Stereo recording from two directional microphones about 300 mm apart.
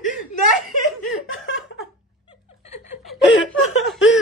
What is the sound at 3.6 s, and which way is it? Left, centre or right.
Speech, left.